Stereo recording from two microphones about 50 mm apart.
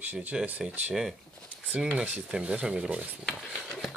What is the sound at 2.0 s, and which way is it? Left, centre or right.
Speech, centre.